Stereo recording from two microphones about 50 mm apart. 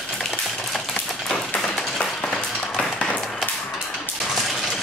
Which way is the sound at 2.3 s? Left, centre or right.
Centre.